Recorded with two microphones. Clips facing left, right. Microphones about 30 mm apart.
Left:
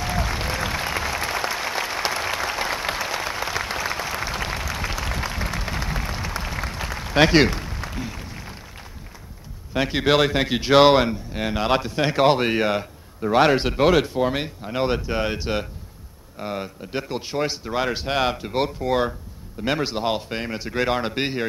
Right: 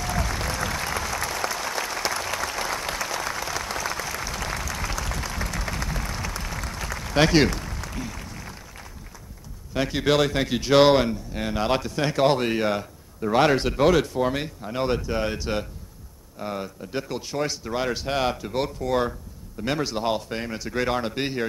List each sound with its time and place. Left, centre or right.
0.0 s applause: left
9.8 s speech: left